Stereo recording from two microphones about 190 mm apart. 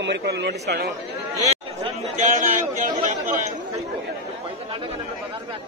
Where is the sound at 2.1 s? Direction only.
45° right (ahead or behind).